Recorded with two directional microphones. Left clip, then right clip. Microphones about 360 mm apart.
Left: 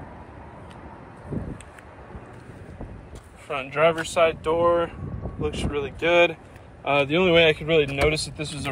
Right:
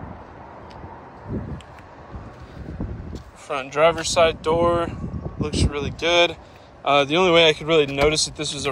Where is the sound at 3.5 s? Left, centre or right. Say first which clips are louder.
Right 3 dB; centre.